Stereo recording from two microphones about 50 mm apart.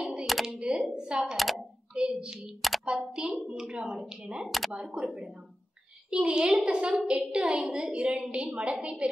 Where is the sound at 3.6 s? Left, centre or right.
Centre.